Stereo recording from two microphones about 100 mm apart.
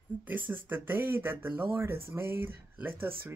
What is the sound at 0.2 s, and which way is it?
Speech, 20° right (ahead or behind).